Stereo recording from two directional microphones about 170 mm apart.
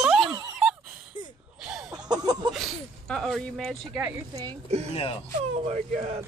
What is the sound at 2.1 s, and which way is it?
Speech, 25° right (ahead or behind).